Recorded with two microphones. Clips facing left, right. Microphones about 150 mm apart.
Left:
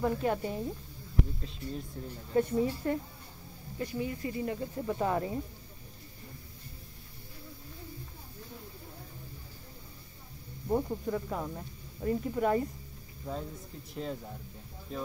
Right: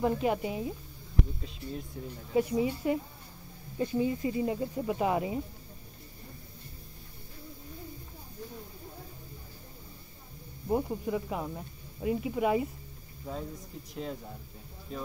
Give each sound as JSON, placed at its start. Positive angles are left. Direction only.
{"t": 0.0, "sound": "speech", "side_deg": -15}
{"t": 3.7, "sound": "speech", "side_deg": -25}
{"t": 10.7, "sound": "speech", "side_deg": -10}
{"t": 14.9, "sound": "speech", "side_deg": 0}